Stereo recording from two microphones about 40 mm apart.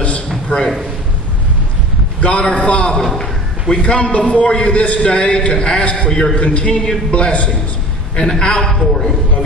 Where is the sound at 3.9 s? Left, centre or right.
Left.